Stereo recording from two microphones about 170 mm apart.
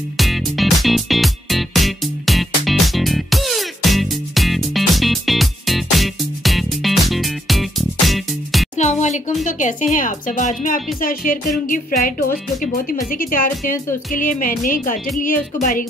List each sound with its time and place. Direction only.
0.2 s music: centre (ahead or behind)
8.7 s music: 45° left (ahead or behind)
12.9 s speech: 55° left (ahead or behind)